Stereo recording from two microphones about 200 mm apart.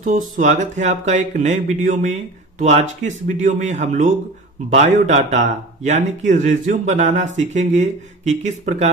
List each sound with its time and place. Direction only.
0.0 s speech: 40° right (ahead or behind)